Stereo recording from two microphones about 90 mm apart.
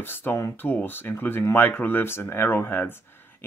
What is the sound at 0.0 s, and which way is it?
Speech, 25° left (ahead or behind).